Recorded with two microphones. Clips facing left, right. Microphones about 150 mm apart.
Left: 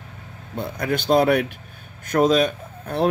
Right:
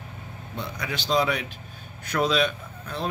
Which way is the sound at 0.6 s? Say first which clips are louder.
Left 8 dB; 55° left (ahead or behind).